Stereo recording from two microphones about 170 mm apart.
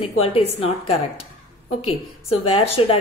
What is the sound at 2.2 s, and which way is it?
Speech, 35° left (ahead or behind).